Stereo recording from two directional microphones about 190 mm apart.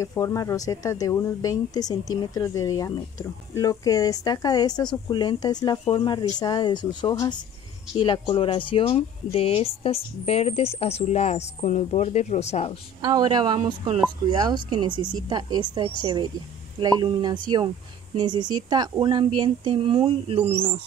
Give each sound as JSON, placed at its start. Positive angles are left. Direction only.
{"t": 0.0, "sound": "speech", "side_deg": 15}
{"t": 13.0, "sound": "speech", "side_deg": -20}